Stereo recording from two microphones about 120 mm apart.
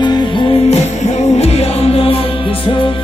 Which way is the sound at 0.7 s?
65° left (ahead or behind).